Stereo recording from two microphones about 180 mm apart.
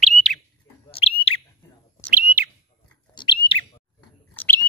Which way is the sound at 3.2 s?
30° left (ahead or behind).